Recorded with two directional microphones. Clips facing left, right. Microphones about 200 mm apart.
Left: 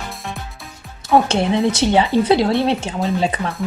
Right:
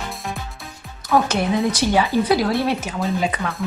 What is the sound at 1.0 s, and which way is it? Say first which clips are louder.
A woman's voice: left 3 dB; 25° left (ahead or behind).